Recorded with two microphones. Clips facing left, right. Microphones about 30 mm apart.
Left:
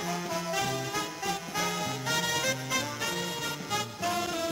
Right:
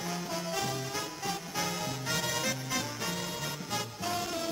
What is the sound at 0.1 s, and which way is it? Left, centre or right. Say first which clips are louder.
Music: left 3 dB; centre.